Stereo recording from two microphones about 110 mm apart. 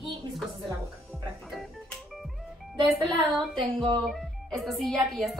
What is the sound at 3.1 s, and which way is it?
Speech, 50° right (ahead or behind).